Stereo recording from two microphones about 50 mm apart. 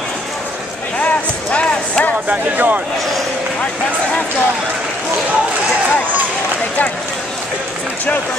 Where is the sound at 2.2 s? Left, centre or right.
Right.